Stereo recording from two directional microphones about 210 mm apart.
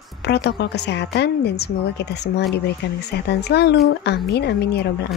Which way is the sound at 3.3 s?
55° left (ahead or behind).